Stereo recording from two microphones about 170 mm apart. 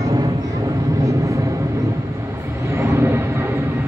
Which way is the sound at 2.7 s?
15° right (ahead or behind).